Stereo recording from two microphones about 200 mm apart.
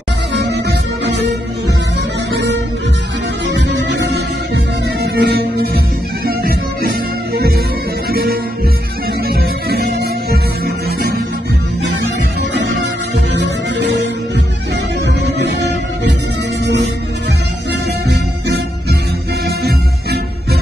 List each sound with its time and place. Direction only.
0.3 s music: 55° right (ahead or behind)
3.4 s music: 60° right (ahead or behind)
9.7 s music: 55° right (ahead or behind)
13.3 s music: 60° right (ahead or behind)
15.2 s music: 60° right (ahead or behind)
18.0 s music: 55° right (ahead or behind)